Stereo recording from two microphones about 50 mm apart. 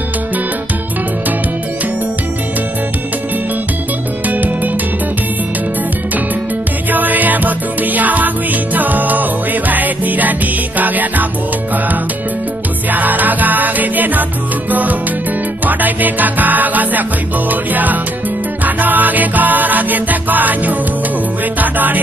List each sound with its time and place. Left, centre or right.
6.9 s music: right
12.9 s music: right